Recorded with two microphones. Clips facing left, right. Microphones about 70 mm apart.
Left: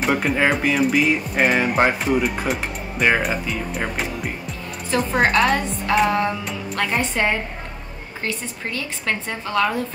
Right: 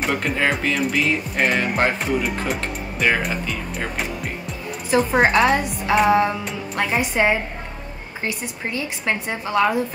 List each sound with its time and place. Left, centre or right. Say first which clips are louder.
0.0 s speech: left 2 dB; centre
4.9 s a woman's voice: right 2 dB; centre